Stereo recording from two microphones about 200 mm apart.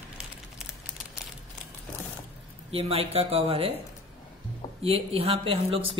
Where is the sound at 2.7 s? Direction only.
30° right (ahead or behind).